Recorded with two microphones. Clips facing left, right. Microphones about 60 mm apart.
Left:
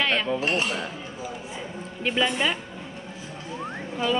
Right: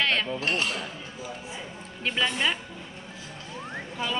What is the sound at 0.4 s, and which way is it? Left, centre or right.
Speech, centre.